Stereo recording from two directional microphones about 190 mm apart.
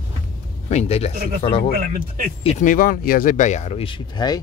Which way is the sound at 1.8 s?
45° right (ahead or behind).